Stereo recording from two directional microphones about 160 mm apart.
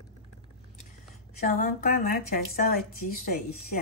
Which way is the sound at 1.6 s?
65° left (ahead or behind).